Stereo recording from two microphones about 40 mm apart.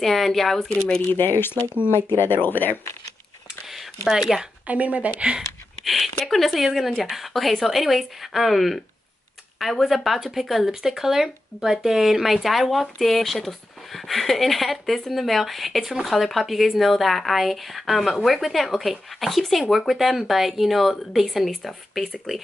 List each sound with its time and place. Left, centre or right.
0.0 s speech: centre
1.1 s speech: left
4.1 s speech: centre
4.6 s speech: right
6.2 s speech: centre